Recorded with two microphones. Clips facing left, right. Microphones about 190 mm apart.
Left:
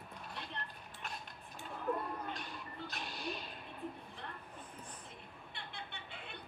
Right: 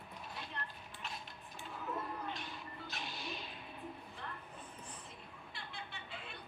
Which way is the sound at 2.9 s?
50° left (ahead or behind).